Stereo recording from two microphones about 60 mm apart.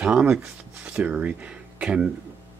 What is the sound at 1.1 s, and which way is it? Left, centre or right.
Speech, right.